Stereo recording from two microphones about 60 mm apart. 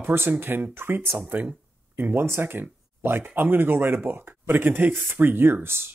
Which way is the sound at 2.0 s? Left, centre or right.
Right.